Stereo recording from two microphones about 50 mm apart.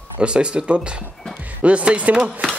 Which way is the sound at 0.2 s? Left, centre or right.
Right.